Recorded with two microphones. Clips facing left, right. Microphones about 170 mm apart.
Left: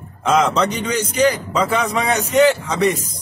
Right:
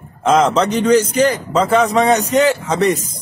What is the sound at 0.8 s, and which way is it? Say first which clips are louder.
A man's voice: right 7 dB; 35° right (ahead or behind).